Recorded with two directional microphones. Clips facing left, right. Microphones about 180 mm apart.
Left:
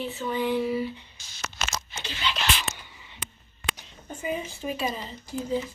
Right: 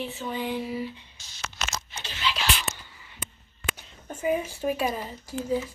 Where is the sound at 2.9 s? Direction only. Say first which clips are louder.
Left 1 dB; 20° left (ahead or behind).